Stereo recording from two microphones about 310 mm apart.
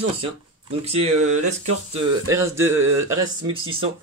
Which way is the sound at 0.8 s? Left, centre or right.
Right.